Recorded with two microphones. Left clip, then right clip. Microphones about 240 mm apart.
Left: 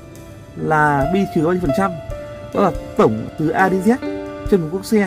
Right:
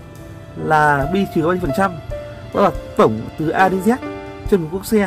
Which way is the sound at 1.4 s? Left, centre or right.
Right.